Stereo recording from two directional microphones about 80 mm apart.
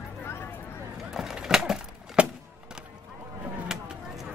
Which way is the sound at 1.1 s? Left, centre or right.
Centre.